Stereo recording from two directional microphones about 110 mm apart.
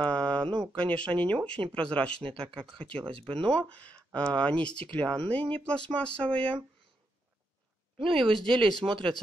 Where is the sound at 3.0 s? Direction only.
50° right (ahead or behind).